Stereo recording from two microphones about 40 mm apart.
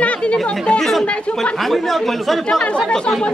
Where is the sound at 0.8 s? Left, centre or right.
Centre.